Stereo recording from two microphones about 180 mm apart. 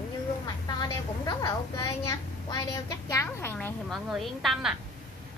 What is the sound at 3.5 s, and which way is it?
A woman's voice, centre (ahead or behind).